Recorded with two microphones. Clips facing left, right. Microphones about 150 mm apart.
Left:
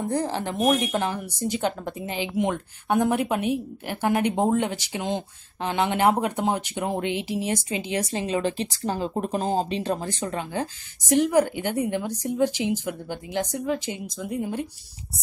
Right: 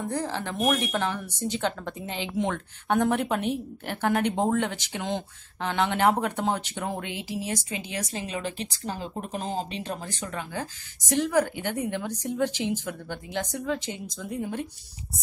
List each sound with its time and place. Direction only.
0.2 s speech: 15° left (ahead or behind)